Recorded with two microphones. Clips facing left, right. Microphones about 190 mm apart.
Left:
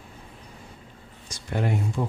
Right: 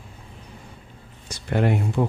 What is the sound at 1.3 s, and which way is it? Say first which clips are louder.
Speech: right 5 dB; 65° right (ahead or behind).